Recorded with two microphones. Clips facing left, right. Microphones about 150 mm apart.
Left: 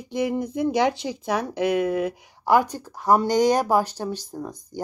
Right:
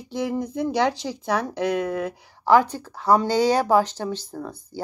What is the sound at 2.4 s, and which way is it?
Speech, 10° left (ahead or behind).